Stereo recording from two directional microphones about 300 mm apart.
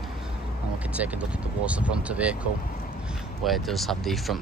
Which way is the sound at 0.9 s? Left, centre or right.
Centre.